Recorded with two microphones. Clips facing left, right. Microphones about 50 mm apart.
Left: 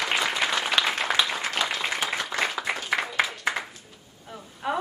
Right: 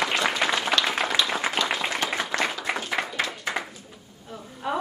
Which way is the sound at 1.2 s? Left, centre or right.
Centre.